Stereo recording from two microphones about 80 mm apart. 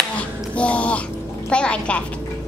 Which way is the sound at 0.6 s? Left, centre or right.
Centre.